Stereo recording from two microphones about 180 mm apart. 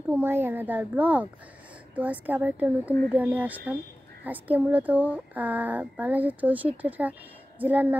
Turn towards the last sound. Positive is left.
turn(degrees=-10)  # may be behind; listen again after turning